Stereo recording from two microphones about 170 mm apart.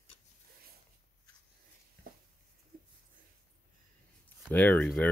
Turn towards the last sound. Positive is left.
turn(degrees=10)  # may be behind; listen again after turning